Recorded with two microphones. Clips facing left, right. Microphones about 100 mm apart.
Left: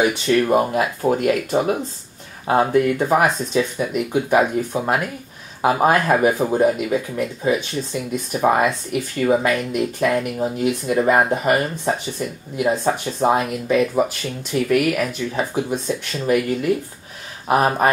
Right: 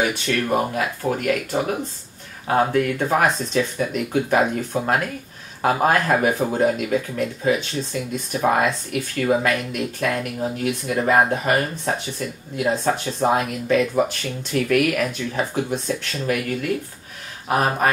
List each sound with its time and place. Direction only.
0.3 s speech: 25° left (ahead or behind); by 15.8 s 5° left (ahead or behind)
16.3 s speech: 20° left (ahead or behind)